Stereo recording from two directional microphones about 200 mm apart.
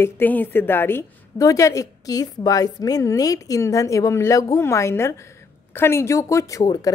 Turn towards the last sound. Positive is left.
turn(degrees=20)  # may be behind; listen again after turning